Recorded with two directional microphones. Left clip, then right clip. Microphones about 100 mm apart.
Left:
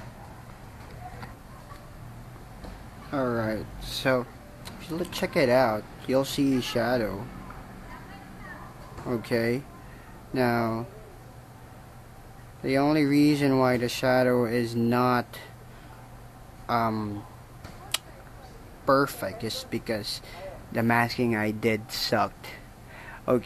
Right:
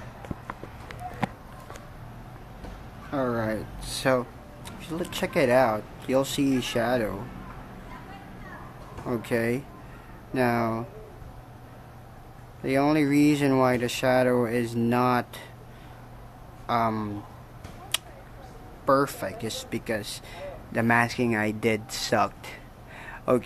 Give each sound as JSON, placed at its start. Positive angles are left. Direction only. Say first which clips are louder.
{"t": 3.1, "sound": "speech", "louder": "even", "side_deg": 25}
{"t": 9.0, "sound": "speech", "louder": "even", "side_deg": 20}
{"t": 12.6, "sound": "speech", "louder": "even", "side_deg": 25}
{"t": 16.6, "sound": "speech", "louder": "right 1 dB", "side_deg": 25}
{"t": 17.9, "sound": "a sound", "louder": "right 1 dB", "side_deg": 35}
{"t": 18.9, "sound": "speech", "louder": "even", "side_deg": 25}